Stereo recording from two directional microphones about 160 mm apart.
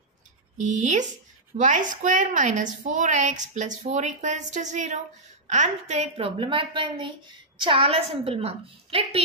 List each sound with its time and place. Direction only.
0.6 s a woman's voice: 45° right (ahead or behind)